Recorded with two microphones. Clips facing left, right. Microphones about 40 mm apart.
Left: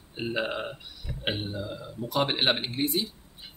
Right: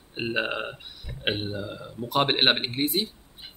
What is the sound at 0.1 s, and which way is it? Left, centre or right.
Speech, right.